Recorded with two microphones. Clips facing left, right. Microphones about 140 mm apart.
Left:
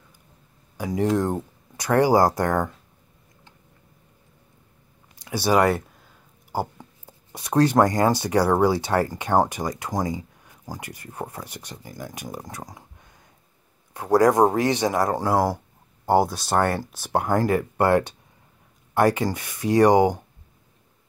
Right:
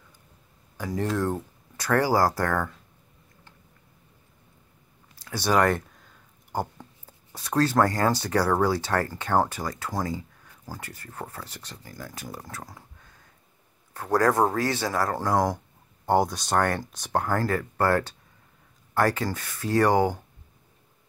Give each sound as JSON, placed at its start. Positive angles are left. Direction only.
{"t": 0.7, "sound": "speech", "side_deg": 10}
{"t": 5.1, "sound": "speech", "side_deg": 15}